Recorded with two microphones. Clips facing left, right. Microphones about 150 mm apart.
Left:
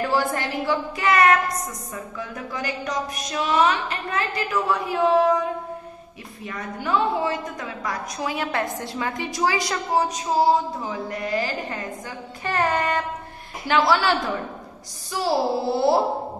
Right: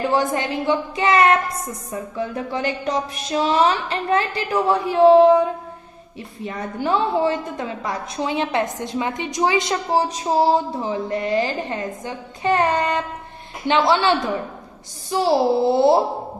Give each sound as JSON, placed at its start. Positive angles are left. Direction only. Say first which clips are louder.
{"t": 0.1, "sound": "a woman's voice", "louder": "right 3 dB", "side_deg": -20}
{"t": 6.4, "sound": "a woman's voice", "louder": "right 5 dB", "side_deg": -30}